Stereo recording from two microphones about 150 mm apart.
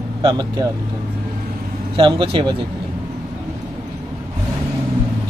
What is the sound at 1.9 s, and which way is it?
Speech, 35° right (ahead or behind).